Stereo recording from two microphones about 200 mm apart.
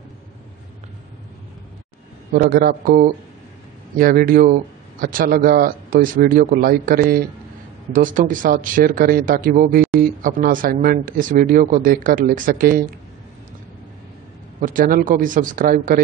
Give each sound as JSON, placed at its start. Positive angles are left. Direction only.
{"t": 2.3, "sound": "speech", "side_deg": -45}
{"t": 14.6, "sound": "speech", "side_deg": -45}